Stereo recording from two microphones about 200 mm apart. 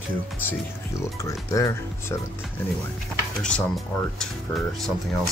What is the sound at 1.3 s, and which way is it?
Speech, 15° left (ahead or behind).